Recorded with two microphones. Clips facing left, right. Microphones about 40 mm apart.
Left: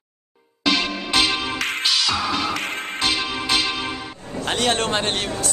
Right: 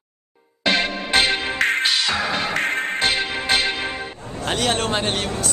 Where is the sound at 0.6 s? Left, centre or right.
Right.